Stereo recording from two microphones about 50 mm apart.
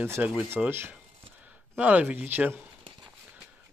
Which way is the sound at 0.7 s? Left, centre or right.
Right.